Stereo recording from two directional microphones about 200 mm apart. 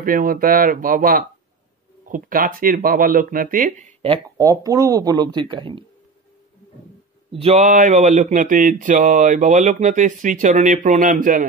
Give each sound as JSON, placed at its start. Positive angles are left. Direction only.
{"t": 0.0, "sound": "speech", "side_deg": -45}
{"t": 7.3, "sound": "speech", "side_deg": -30}